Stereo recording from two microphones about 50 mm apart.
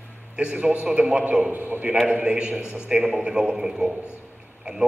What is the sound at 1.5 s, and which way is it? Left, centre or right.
Speech, right.